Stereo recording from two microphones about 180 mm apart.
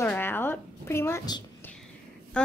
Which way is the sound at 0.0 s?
10° left (ahead or behind).